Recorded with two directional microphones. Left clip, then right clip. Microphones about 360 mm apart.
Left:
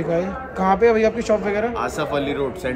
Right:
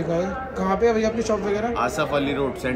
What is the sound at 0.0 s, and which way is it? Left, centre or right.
Speech, centre.